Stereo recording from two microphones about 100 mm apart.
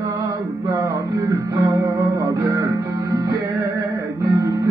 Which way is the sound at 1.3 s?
35° right (ahead or behind).